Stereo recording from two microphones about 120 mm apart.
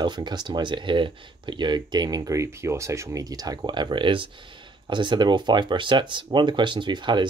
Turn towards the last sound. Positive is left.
turn(degrees=-40)  # may be behind; listen again after turning